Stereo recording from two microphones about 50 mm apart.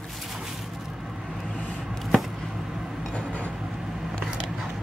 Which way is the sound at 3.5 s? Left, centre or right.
Centre.